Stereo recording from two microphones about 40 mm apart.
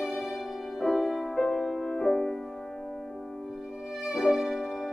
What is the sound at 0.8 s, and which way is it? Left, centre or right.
Music, centre.